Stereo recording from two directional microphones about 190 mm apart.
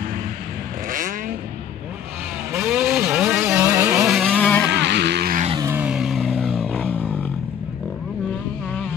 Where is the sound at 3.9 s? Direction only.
5° right (ahead or behind).